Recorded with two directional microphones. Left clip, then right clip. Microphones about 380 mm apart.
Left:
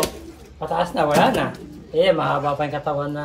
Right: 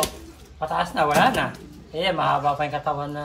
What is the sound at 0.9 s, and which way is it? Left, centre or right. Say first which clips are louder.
Speech: left 1 dB; centre.